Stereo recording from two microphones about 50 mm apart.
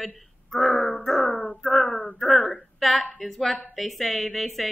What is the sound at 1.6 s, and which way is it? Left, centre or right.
Speech, centre.